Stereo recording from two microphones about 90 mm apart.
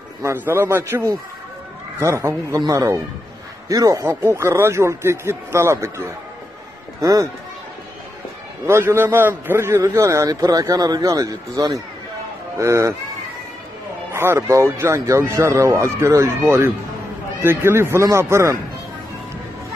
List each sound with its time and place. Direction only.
0.2 s a man's voice: 25° right (ahead or behind)
7.0 s speech: 40° right (ahead or behind)
8.6 s a man's voice: 25° right (ahead or behind)
10.2 s speech: 40° right (ahead or behind)
14.1 s a man's voice: 30° right (ahead or behind)